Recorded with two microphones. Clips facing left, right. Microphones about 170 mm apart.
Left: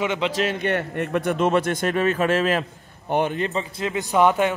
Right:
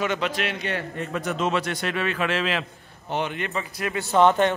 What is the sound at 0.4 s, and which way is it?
A man's voice, 50° left (ahead or behind).